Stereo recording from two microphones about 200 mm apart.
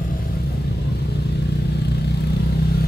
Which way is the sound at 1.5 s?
55° left (ahead or behind).